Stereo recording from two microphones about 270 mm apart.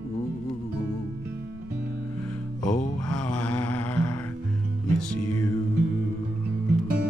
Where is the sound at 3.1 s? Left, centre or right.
Centre.